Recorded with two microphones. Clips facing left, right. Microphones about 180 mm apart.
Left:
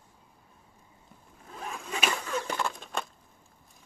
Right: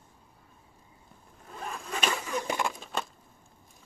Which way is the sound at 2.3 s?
15° right (ahead or behind).